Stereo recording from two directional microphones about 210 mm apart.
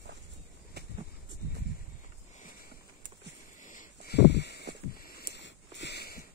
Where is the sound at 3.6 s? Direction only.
40° left (ahead or behind).